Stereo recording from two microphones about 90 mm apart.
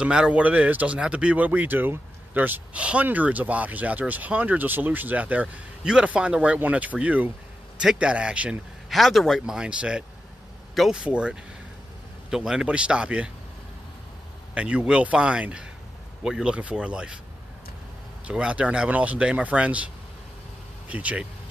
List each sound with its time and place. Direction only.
0.0 s speech: 10° right (ahead or behind)
8.9 s speech: centre (ahead or behind)
14.5 s speech: 15° right (ahead or behind)
18.2 s speech: 10° right (ahead or behind)
20.9 s speech: 15° right (ahead or behind)